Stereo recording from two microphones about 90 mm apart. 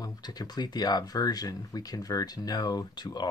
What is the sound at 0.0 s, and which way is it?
Speech, 45° left (ahead or behind).